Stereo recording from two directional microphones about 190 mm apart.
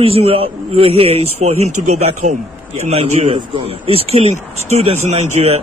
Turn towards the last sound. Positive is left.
turn(degrees=-35)  # may be behind; listen again after turning